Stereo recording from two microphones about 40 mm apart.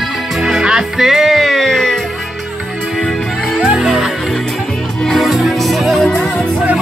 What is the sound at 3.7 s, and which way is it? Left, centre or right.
Music, centre.